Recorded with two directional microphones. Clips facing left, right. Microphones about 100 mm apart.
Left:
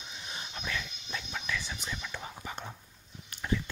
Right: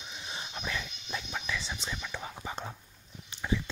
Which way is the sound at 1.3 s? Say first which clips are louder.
Even; 15° right (ahead or behind).